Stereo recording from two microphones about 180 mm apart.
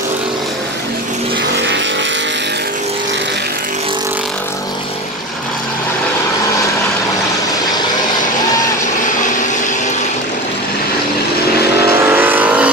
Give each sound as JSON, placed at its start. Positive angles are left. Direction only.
{"t": 12.1, "sound": "vehicle", "side_deg": -10}